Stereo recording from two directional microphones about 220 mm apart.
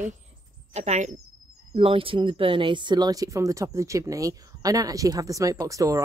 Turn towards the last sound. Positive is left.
turn(degrees=-15)  # may be behind; listen again after turning